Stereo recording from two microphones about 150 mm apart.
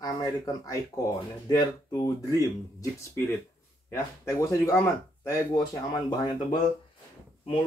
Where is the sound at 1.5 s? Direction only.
25° left (ahead or behind).